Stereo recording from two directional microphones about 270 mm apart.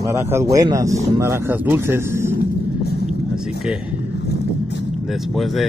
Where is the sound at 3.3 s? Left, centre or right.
Centre.